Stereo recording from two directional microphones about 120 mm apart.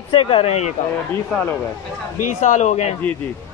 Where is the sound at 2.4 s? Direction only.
85° left.